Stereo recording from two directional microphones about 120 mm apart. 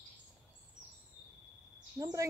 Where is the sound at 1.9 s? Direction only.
30° right (ahead or behind).